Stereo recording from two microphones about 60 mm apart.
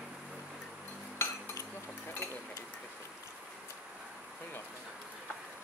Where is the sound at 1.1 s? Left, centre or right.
Left.